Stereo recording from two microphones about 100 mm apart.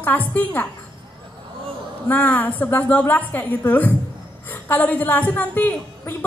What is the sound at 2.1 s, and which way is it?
A woman's voice, 15° left (ahead or behind).